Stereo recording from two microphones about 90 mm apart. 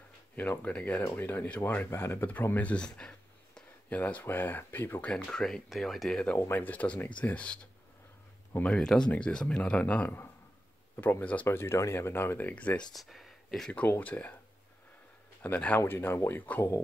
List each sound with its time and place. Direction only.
0.4 s speech: 20° left (ahead or behind)
5.1 s speech: 5° left (ahead or behind)
6.3 s speech: 25° left (ahead or behind)
8.6 s speech: 5° left (ahead or behind)
12.9 s speech: centre (ahead or behind)
13.7 s speech: 15° left (ahead or behind)
15.4 s speech: 20° left (ahead or behind)